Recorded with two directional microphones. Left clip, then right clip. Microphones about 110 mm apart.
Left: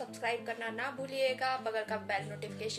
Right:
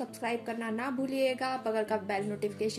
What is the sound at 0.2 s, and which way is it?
A woman's voice, 40° right (ahead or behind).